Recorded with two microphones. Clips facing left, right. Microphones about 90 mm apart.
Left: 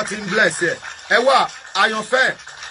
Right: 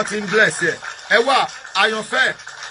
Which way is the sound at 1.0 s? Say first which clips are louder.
Left 1 dB; 20° left (ahead or behind).